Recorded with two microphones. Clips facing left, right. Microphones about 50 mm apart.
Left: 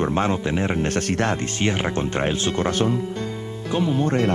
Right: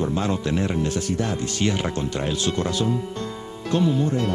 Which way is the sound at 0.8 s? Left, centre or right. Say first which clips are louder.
Left 3 dB; left.